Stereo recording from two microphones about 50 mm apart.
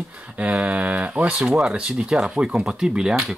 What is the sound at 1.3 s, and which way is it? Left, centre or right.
Speech, centre.